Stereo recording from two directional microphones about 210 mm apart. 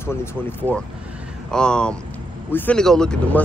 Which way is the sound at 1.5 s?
5° left (ahead or behind).